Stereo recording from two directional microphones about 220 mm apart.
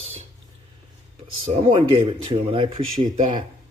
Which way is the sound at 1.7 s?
20° right (ahead or behind).